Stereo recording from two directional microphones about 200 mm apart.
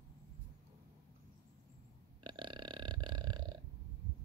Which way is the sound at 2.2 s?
25° right (ahead or behind).